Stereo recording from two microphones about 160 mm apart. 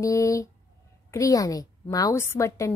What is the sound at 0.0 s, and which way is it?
A woman's voice, 20° left (ahead or behind).